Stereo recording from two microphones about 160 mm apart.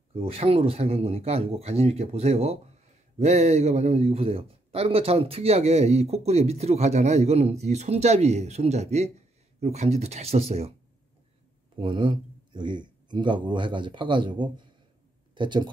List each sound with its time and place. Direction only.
0.1 s a man's voice: 35° right (ahead or behind)
11.7 s speech: 30° right (ahead or behind)